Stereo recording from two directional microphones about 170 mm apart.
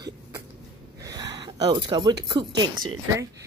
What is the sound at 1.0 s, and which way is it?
Gasp, 20° right (ahead or behind).